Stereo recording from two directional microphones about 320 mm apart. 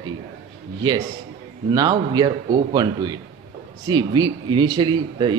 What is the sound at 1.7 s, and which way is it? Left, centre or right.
Speech, centre.